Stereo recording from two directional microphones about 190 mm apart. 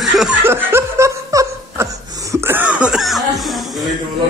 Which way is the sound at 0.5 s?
10° right (ahead or behind).